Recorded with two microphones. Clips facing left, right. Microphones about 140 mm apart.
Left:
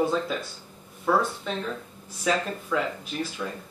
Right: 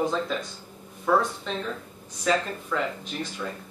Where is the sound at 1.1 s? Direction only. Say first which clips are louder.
Right 1 dB; 5° left (ahead or behind).